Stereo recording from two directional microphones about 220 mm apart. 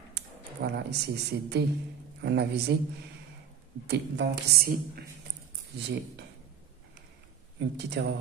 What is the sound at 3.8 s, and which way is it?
A woman's voice, 50° right (ahead or behind).